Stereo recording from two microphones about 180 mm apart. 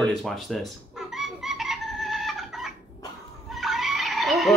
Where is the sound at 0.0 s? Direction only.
Centre (ahead or behind).